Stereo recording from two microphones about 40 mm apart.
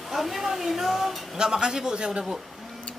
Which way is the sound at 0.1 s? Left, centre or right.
Centre.